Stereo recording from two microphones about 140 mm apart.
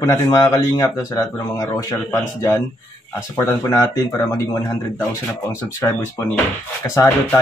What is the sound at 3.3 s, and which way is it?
Speech, 20° left (ahead or behind).